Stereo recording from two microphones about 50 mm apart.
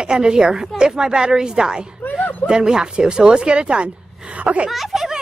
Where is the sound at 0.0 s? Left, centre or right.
Centre.